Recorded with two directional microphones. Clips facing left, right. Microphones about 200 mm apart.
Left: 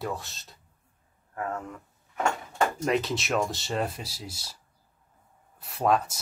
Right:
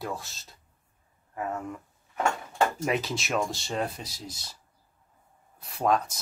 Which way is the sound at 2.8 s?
Centre (ahead or behind).